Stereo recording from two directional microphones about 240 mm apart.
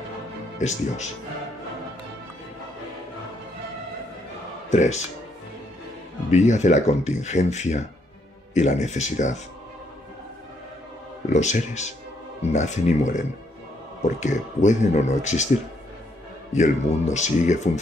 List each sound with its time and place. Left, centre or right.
0.6 s speech: left
4.6 s speech: left
6.3 s speech: left
11.2 s speech: left
16.5 s speech: left